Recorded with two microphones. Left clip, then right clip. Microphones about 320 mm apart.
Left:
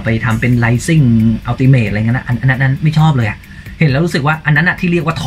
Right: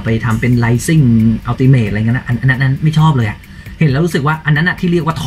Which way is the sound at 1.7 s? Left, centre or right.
Left.